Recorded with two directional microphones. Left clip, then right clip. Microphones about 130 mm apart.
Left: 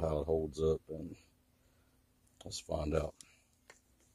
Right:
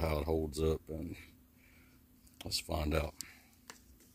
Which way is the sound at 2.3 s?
40° right (ahead or behind).